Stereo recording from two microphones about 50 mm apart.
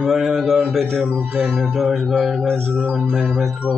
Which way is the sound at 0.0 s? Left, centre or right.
Centre.